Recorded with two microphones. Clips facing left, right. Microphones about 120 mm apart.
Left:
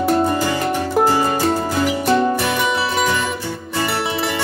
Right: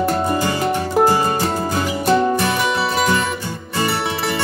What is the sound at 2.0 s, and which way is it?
Music, centre (ahead or behind).